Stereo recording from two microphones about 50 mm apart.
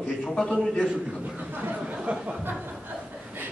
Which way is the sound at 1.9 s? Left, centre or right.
Right.